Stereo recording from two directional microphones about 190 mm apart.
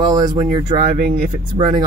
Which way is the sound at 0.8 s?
40° right (ahead or behind).